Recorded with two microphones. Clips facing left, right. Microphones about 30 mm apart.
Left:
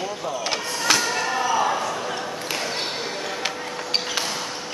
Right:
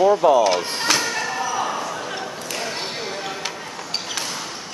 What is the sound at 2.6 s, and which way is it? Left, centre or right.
Basketball bounce, centre.